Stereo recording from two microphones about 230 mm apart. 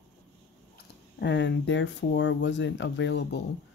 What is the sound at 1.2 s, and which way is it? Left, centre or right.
Speech, left.